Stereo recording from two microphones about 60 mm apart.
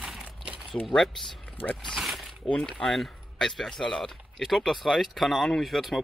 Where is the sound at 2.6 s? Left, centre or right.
Centre.